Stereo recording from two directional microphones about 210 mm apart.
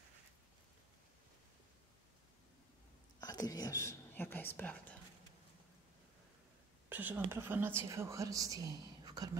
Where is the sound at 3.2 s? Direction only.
15° left (ahead or behind).